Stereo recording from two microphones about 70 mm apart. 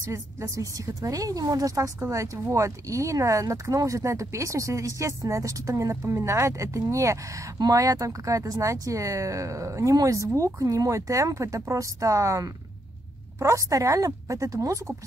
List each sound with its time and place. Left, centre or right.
0.0 s a woman's voice: right
7.5 s speech: right